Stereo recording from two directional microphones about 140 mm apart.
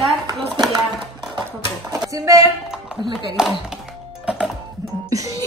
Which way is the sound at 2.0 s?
25° right (ahead or behind).